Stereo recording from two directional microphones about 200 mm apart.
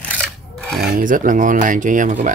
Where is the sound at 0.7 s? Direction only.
45° right (ahead or behind).